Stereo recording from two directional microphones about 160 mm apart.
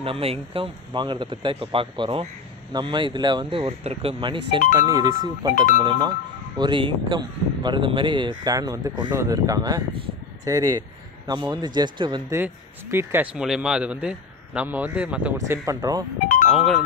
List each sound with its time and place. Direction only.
0.0 s speech: 35° right (ahead or behind)
12.9 s a man's voice: 10° right (ahead or behind)
16.4 s speech: centre (ahead or behind)